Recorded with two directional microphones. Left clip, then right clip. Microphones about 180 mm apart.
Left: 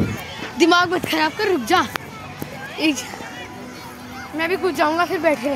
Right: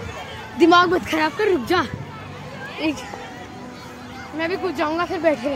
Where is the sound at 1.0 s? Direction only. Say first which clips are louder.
Even; 35° left (ahead or behind).